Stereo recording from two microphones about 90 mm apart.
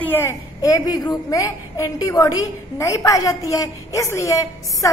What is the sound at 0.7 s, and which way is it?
A woman's voice, 45° left (ahead or behind).